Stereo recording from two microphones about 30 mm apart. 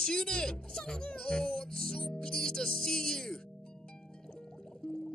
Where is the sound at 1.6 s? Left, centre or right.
Centre.